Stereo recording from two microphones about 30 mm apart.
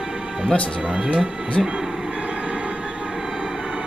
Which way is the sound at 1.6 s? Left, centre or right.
Centre.